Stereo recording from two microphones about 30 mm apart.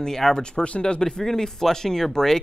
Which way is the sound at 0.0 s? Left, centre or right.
Centre.